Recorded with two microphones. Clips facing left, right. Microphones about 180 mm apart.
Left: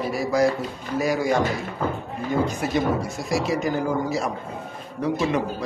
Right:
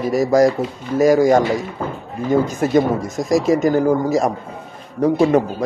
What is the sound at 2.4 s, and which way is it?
Speech, 45° right (ahead or behind).